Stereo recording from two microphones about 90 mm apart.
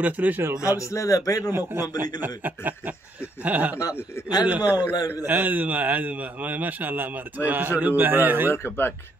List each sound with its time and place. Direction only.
0.0 s a man's voice: 20° right (ahead or behind)
0.7 s a man's voice: 35° left (ahead or behind)
1.5 s a man's voice: 25° right (ahead or behind)
8.6 s speech: 25° left (ahead or behind)